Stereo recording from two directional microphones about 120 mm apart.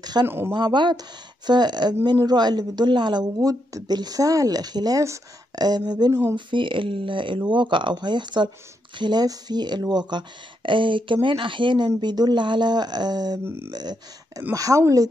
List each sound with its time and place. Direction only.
0.0 s speech: 35° right (ahead or behind)
0.3 s speech: 20° right (ahead or behind)
0.6 s a woman's voice: 40° right (ahead or behind)
13.4 s speech: 20° right (ahead or behind)
13.7 s a woman's voice: 35° right (ahead or behind)